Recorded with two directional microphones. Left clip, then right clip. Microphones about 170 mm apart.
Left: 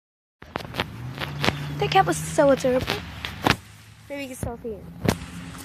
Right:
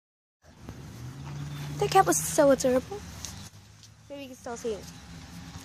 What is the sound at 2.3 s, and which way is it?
Speech, 40° right (ahead or behind).